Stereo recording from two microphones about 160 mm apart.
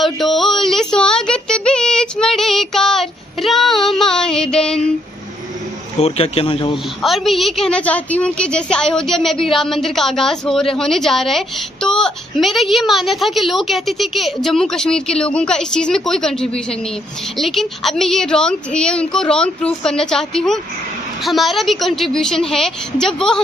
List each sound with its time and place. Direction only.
0.0 s a sound: centre (ahead or behind)
5.9 s speech: 40° left (ahead or behind)
7.0 s a woman's voice: centre (ahead or behind)